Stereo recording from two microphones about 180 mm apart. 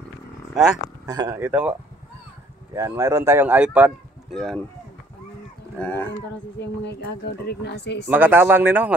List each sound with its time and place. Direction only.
1.0 s speech: 20° right (ahead or behind)
4.4 s speech: 5° left (ahead or behind)
5.8 s speech: 10° left (ahead or behind)
6.8 s speech: 70° left (ahead or behind)
8.1 s speech: 10° right (ahead or behind)